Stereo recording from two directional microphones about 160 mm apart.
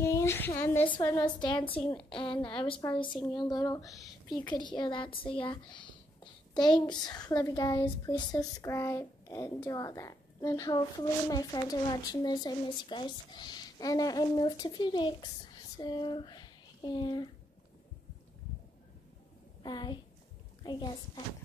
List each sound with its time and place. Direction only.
0.0 s speech: 15° left (ahead or behind)
1.2 s a woman's voice: 30° left (ahead or behind)
19.6 s a woman's voice: 25° left (ahead or behind)